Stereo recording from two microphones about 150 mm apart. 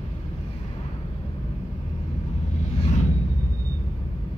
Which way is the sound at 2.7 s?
45° left (ahead or behind).